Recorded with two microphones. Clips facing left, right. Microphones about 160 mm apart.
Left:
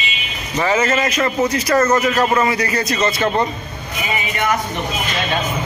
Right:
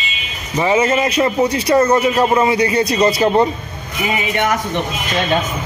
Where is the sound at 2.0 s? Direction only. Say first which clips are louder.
Right 2 dB; 25° right (ahead or behind).